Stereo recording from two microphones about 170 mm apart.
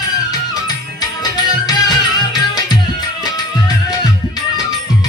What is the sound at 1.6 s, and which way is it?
Music, 25° left (ahead or behind).